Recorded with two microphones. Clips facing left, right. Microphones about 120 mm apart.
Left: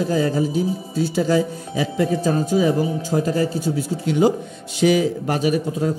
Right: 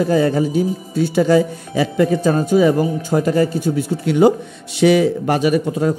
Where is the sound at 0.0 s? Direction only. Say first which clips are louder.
Right 4 dB; 65° right (ahead or behind).